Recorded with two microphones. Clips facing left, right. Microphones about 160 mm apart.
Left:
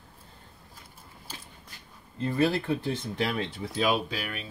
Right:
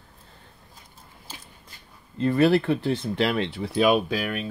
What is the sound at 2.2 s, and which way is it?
Speech, 70° right (ahead or behind).